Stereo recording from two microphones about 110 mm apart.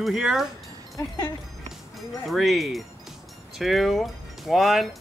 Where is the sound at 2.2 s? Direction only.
Centre (ahead or behind).